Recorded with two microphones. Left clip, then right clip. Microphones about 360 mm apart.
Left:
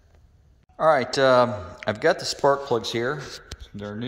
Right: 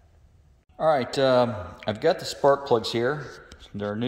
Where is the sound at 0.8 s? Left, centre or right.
Centre.